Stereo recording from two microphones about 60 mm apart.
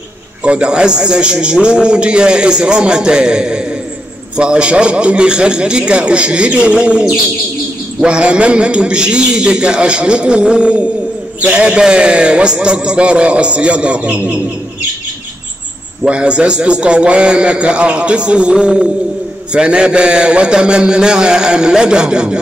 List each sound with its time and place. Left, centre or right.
0.4 s a man's voice: centre
16.0 s a man's voice: centre